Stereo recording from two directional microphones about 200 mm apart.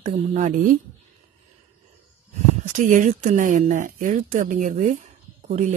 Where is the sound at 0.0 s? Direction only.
35° right (ahead or behind).